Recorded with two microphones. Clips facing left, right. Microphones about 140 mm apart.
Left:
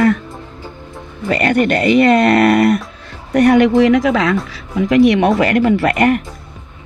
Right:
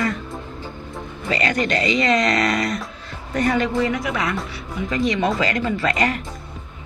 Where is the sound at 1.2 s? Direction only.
55° left (ahead or behind).